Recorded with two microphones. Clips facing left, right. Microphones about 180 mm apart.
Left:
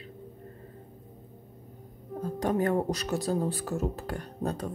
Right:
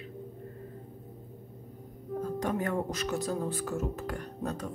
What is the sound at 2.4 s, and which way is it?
Speech, 35° left (ahead or behind).